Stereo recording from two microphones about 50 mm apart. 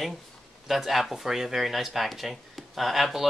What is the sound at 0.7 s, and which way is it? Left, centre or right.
Speech, centre.